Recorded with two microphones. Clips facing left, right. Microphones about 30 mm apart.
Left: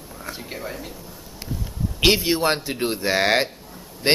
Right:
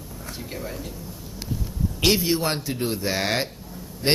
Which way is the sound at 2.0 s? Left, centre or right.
Left.